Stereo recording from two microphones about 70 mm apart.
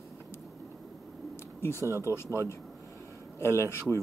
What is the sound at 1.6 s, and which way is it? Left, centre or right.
Speech, left.